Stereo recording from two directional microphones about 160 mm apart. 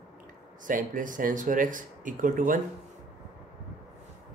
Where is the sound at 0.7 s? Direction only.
55° right (ahead or behind).